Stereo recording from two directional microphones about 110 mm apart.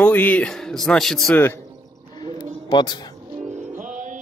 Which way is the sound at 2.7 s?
40° left (ahead or behind).